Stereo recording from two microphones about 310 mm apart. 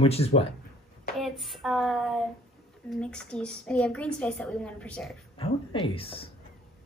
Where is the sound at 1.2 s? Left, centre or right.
Centre.